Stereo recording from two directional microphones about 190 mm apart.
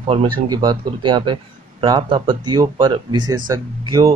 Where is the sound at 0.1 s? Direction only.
25° right (ahead or behind).